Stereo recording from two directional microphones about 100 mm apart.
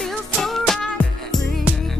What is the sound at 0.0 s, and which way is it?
Music, 5° left (ahead or behind).